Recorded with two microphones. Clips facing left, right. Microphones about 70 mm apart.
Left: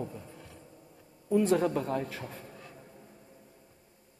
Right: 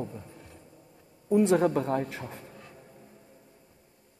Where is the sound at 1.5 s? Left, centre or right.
Right.